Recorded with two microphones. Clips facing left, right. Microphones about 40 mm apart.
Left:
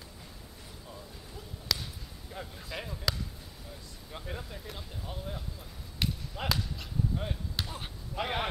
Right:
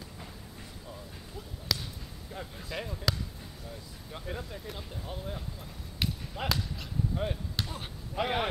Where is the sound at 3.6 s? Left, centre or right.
Centre.